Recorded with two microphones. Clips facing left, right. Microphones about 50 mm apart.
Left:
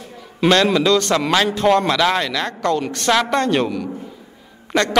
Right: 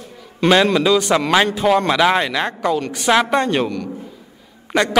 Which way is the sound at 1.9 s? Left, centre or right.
Centre.